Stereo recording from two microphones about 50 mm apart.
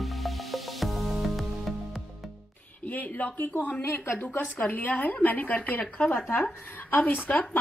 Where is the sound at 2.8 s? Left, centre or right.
Left.